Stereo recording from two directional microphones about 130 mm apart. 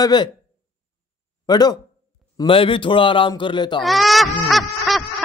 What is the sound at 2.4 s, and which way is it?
A man's voice, 45° left (ahead or behind).